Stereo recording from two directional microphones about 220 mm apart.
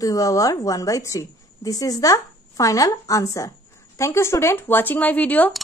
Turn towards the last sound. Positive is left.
turn(degrees=5)  # may be behind; listen again after turning